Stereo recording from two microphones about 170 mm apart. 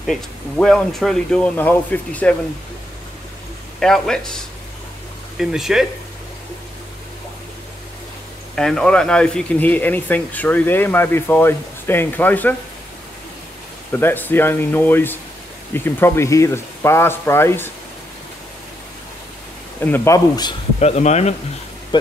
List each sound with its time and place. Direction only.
0.0 s speech: centre (ahead or behind)
3.8 s speech: 5° left (ahead or behind)
5.4 s speech: centre (ahead or behind)
8.5 s speech: 5° left (ahead or behind)
13.9 s speech: 10° left (ahead or behind)
19.8 s speech: 10° left (ahead or behind)
20.8 s speech: 40° left (ahead or behind)